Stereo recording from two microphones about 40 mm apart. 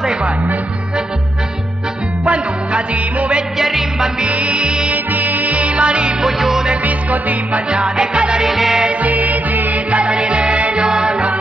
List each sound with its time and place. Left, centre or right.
2.2 s music: right
3.5 s music: centre
4.2 s music: right
6.2 s music: centre
6.8 s music: right
7.7 s music: right
8.4 s music: centre
8.8 s music: right
10.9 s music: centre